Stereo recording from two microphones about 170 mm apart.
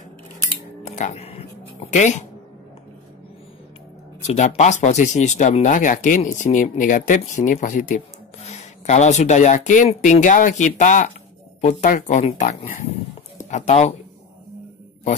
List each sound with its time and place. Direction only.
0.8 s a sound: 45° left (ahead or behind)
1.9 s speech: 45° left (ahead or behind)
4.3 s speech: 40° left (ahead or behind)
13.5 s speech: 40° left (ahead or behind)